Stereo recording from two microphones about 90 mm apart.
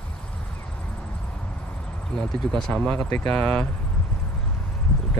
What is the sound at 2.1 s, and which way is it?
Speech, 5° left (ahead or behind).